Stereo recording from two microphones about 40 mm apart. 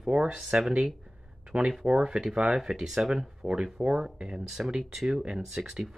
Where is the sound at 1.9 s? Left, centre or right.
Right.